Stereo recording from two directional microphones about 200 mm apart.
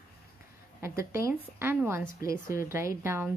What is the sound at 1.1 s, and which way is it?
Speech, 10° right (ahead or behind).